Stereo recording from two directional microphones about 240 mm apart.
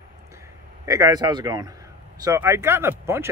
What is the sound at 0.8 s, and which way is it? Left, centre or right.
Speech, centre.